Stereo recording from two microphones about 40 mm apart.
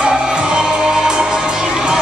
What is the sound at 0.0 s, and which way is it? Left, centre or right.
Music, centre.